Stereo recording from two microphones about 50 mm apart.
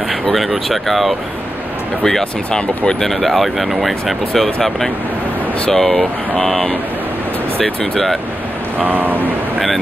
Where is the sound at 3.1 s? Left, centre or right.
Centre.